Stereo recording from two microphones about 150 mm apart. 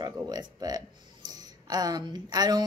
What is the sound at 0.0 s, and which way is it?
Speech, 25° right (ahead or behind).